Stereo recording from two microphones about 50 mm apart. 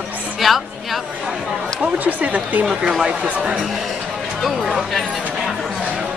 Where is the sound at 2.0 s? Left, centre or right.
Right.